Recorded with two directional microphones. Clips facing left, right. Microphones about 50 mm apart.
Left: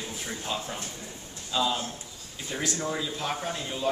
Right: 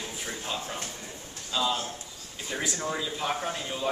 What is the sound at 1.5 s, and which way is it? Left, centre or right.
Speech, centre.